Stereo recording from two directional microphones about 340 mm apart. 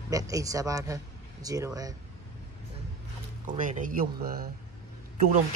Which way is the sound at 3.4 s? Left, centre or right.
Right.